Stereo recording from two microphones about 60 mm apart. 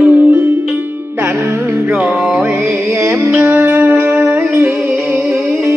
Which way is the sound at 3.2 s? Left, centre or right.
Right.